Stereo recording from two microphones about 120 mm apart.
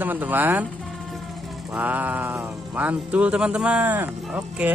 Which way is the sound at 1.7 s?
15° right (ahead or behind).